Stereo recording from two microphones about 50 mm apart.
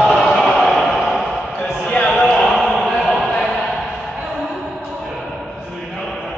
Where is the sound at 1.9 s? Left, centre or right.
Left.